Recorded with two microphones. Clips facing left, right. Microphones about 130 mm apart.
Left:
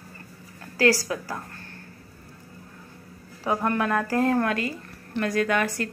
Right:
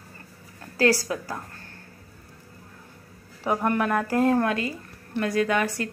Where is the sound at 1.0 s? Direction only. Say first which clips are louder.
Even; 20° right (ahead or behind).